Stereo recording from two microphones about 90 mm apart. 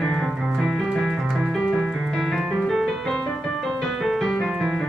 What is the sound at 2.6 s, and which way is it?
Music, 5° left (ahead or behind).